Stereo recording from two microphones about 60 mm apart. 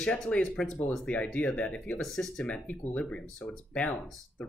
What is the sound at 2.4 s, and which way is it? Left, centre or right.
Speech, left.